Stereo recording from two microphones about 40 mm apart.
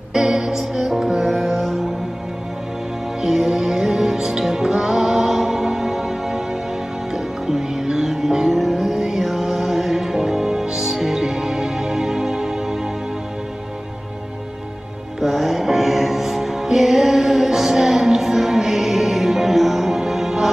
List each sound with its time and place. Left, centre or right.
0.1 s music: centre
3.2 s music: centre
8.5 s music: centre
8.8 s music: centre
15.1 s music: centre